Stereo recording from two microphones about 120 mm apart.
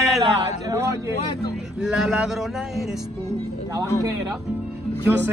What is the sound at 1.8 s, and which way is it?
Speech, 5° right (ahead or behind).